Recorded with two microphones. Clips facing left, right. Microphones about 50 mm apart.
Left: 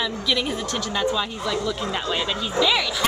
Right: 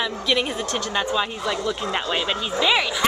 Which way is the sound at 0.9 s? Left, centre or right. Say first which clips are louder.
Even; centre.